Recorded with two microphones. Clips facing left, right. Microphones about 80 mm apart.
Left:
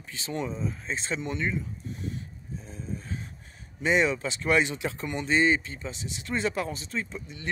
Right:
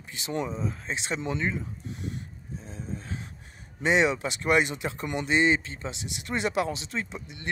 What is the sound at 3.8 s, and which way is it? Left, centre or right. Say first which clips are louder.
Speech: right 1 dB; right.